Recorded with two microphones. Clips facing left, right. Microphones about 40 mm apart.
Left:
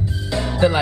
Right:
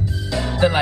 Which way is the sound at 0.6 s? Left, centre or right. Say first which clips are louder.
Left 1 dB; centre.